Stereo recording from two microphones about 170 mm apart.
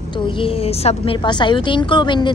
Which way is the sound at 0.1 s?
30° left (ahead or behind).